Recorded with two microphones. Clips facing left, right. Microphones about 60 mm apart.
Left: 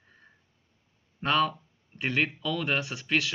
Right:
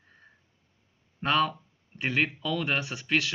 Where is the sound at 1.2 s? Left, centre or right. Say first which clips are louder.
Even; centre.